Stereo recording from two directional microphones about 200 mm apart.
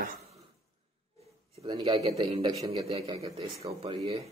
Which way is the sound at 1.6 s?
20° right (ahead or behind).